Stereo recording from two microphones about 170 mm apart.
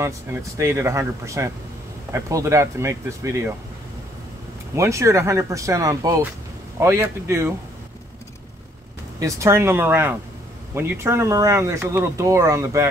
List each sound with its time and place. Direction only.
0.0 s speech: 15° right (ahead or behind)
4.7 s speech: 15° right (ahead or behind)
9.2 s speech: 15° right (ahead or behind)